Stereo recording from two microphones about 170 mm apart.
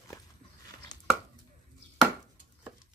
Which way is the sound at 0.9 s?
25° left (ahead or behind).